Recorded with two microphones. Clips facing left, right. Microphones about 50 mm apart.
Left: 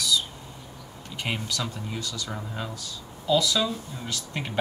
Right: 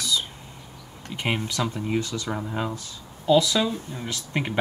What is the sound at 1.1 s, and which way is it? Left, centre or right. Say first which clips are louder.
Speech: right 4 dB; right.